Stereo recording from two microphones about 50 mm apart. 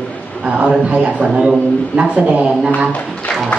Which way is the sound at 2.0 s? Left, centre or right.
Right.